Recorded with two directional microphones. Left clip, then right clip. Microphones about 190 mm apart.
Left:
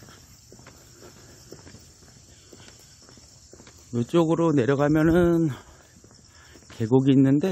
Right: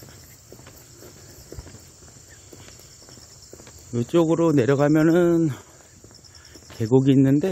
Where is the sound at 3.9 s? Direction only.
10° left (ahead or behind).